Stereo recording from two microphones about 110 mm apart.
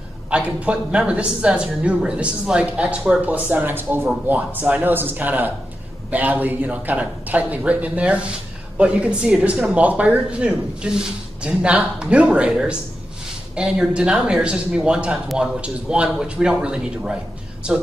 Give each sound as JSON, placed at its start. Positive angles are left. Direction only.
{"t": 0.7, "sound": "speech", "side_deg": -10}